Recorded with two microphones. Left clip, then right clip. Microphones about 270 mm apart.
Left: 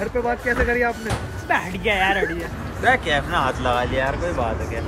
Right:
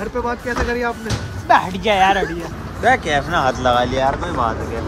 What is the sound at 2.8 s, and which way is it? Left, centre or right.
Speech, right.